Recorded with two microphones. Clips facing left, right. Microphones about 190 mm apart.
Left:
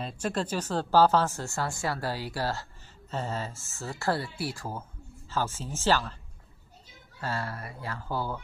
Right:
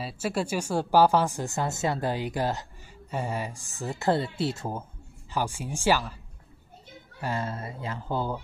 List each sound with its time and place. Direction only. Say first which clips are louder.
0.0 s speech: right 2 dB; 10° right (ahead or behind)
7.2 s speech: right 3 dB; 20° right (ahead or behind)